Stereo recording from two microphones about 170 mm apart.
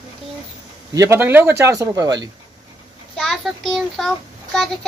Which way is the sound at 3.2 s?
Centre (ahead or behind).